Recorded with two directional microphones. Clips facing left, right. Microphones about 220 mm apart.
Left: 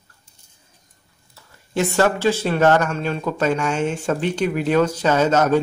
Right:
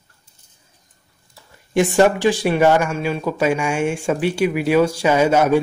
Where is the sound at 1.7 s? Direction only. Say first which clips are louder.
Right 4 dB; 15° right (ahead or behind).